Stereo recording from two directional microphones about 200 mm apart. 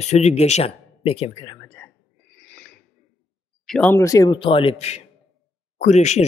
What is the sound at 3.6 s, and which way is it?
Speech, 5° left (ahead or behind).